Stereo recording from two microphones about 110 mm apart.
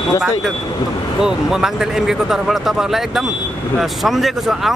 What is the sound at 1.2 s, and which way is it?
Speech, 5° right (ahead or behind).